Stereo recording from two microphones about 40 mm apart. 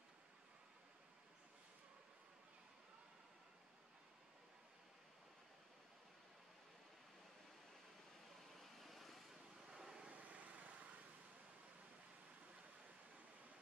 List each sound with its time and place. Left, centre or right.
8.5 s vehicle: centre
9.7 s vehicle: centre
10.0 s vehicle: right